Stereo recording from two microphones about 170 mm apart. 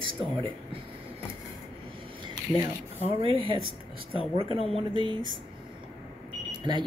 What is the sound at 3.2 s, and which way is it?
Speech, 30° right (ahead or behind).